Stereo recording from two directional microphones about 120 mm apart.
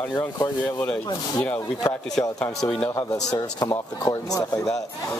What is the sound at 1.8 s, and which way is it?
Speech, 30° left (ahead or behind).